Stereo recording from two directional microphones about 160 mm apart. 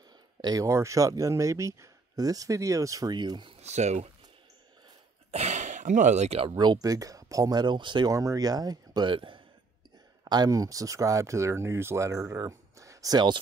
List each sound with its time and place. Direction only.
0.4 s speech: 25° right (ahead or behind)
3.6 s speech: 45° right (ahead or behind)
5.3 s speech: 45° right (ahead or behind)
6.5 s speech: 25° right (ahead or behind)